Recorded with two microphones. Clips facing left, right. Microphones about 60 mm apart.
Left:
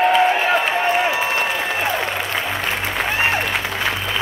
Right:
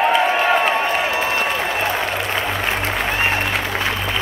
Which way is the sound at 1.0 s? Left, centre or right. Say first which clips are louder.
Even; centre.